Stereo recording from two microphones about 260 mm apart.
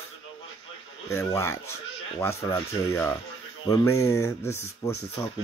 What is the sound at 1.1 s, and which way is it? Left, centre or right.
Speech, centre.